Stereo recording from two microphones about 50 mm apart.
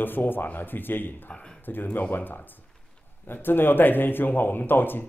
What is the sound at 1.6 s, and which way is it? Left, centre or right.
A man's voice, left.